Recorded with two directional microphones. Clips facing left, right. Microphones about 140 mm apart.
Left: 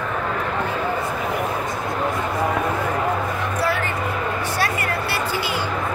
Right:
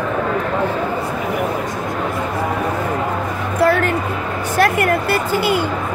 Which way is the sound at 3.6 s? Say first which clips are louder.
Right 10 dB; 55° right (ahead or behind).